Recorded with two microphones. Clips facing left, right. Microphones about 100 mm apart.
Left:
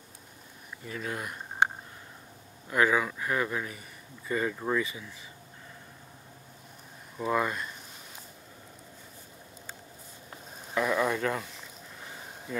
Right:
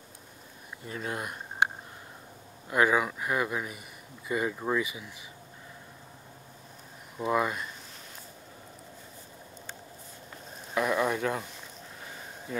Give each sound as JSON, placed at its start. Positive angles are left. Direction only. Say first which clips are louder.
{"t": 0.8, "sound": "speech", "louder": "right 1 dB", "side_deg": -30}
{"t": 2.7, "sound": "speech", "louder": "right 1 dB", "side_deg": -20}
{"t": 7.2, "sound": "speech", "louder": "right 1 dB", "side_deg": -10}
{"t": 10.7, "sound": "a sound", "louder": "even", "side_deg": -10}